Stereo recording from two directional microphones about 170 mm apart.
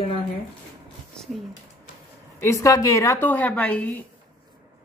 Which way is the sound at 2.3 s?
15° left (ahead or behind).